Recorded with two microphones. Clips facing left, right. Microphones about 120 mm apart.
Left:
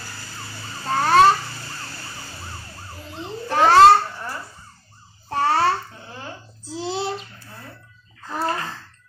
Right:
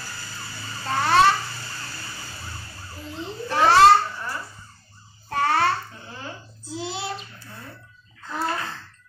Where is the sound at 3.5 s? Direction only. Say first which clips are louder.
Left 2 dB; 45° left (ahead or behind).